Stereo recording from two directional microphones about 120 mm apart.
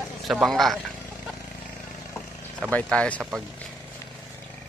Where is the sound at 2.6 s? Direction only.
10° left (ahead or behind).